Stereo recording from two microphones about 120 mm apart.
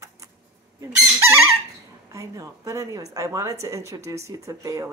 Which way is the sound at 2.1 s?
25° right (ahead or behind).